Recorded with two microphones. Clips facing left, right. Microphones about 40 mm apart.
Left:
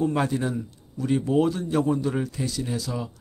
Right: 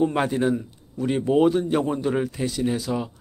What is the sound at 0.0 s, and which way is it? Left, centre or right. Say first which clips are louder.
Speech: right 3 dB; right.